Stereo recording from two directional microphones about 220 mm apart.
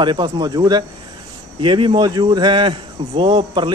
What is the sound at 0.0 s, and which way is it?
A man's voice, 20° right (ahead or behind).